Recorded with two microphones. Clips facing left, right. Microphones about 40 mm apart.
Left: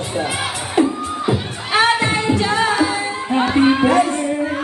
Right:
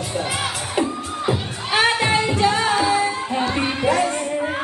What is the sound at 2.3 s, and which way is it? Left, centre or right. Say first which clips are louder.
Music: left 1 dB; left.